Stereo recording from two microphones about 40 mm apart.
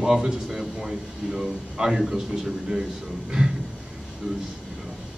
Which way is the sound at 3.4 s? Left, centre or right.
Right.